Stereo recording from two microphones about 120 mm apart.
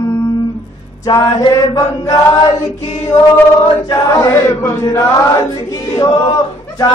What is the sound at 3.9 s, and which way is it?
Chant, 30° left (ahead or behind).